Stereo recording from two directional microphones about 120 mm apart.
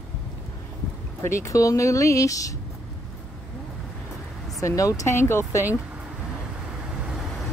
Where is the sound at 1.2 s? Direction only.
25° left (ahead or behind).